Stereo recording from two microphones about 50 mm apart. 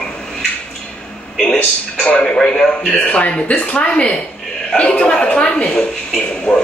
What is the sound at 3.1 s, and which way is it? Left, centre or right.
A man's voice, left.